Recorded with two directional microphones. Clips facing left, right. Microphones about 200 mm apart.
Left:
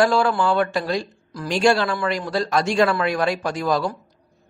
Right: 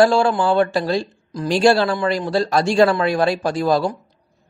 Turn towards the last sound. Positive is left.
turn(degrees=-30)  # may be behind; listen again after turning